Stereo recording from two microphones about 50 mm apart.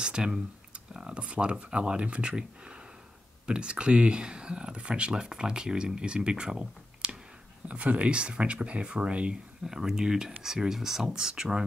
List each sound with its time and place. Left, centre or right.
0.0 s speech: centre
9.7 s speech: centre